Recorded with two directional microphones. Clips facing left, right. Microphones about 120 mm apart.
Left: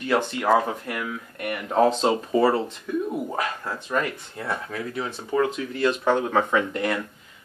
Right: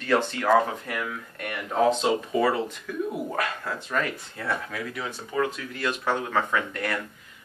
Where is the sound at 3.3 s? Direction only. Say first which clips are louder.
Left 1 dB; 15° left (ahead or behind).